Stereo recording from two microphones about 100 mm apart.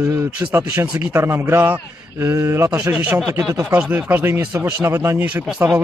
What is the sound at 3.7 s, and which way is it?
Speech, 15° right (ahead or behind).